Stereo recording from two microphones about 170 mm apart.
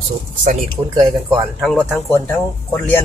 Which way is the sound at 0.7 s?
25° right (ahead or behind).